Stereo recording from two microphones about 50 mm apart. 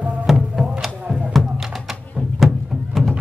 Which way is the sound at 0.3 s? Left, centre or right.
Centre.